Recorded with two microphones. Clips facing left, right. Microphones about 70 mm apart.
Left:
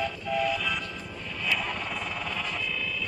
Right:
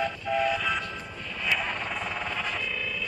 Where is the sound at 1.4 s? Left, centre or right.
Right.